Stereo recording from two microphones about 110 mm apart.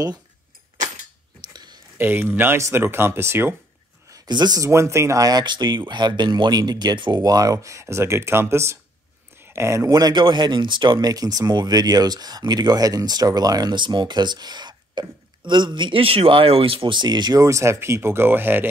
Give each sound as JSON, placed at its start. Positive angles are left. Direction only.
{"t": 1.5, "sound": "a sound", "side_deg": -40}
{"t": 2.0, "sound": "speech", "side_deg": -20}
{"t": 4.1, "sound": "speech", "side_deg": -40}
{"t": 4.6, "sound": "speech", "side_deg": -25}